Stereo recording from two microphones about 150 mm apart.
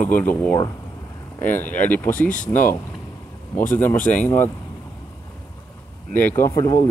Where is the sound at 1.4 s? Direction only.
10° left (ahead or behind).